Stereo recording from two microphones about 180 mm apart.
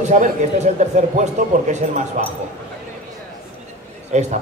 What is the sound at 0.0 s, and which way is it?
Speech, 40° right (ahead or behind).